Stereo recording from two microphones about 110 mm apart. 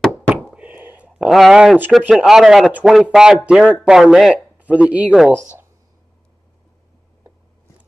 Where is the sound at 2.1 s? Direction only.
5° right (ahead or behind).